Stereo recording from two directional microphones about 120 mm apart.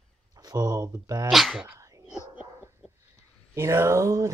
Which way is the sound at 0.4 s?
35° right (ahead or behind).